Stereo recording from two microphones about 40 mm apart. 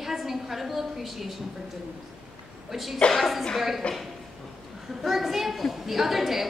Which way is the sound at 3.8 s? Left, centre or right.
Left.